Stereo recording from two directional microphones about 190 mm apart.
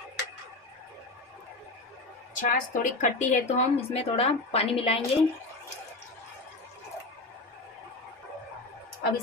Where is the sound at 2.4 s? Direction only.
45° left (ahead or behind).